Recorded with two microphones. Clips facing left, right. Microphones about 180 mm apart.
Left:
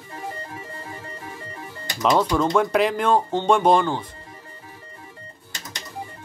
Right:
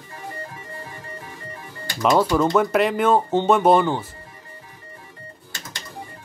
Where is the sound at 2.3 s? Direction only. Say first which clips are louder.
Right 1 dB; 5° right (ahead or behind).